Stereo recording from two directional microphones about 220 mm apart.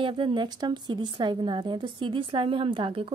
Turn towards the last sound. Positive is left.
turn(degrees=-25)  # may be behind; listen again after turning